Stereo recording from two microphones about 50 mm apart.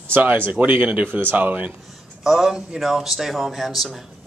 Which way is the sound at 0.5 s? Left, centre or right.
Right.